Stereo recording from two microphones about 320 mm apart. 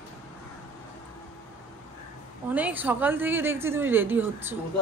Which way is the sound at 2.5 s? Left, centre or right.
Centre.